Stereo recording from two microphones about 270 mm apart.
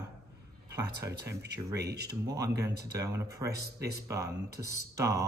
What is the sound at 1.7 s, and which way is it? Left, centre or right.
Speech, right.